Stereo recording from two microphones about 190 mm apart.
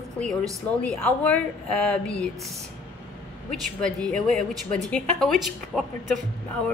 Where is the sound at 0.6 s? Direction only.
5° left (ahead or behind).